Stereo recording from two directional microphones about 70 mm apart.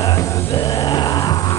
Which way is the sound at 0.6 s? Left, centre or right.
Left.